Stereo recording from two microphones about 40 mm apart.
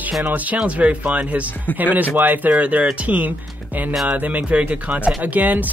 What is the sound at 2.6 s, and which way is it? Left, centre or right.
Speech, right.